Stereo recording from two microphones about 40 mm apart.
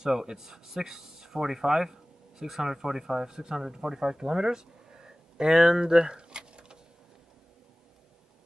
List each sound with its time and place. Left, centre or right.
0.0 s speech: centre